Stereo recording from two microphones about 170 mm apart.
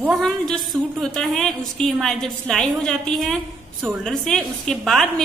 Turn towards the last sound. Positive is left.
turn(degrees=5)  # may be behind; listen again after turning